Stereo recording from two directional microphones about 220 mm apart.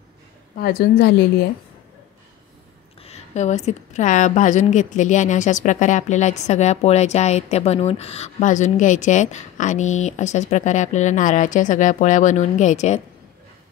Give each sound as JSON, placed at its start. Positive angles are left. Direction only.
{"t": 0.6, "sound": "a woman's voice", "side_deg": 45}
{"t": 3.0, "sound": "a woman's voice", "side_deg": 30}